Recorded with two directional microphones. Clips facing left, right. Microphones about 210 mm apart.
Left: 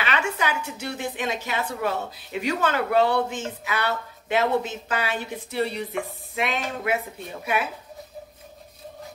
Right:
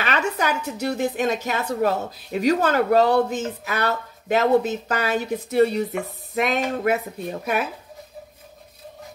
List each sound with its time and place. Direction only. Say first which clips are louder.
0.0 s a woman's voice: right 3 dB; 40° right (ahead or behind)